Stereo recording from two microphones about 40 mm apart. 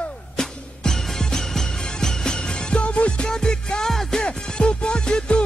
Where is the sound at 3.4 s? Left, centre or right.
Centre.